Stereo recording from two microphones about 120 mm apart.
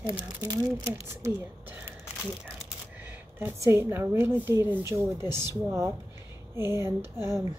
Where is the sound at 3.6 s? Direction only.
20° right (ahead or behind).